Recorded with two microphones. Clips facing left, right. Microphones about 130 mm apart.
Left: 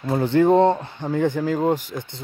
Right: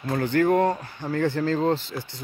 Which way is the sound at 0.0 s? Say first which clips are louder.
Left 4 dB; 20° left (ahead or behind).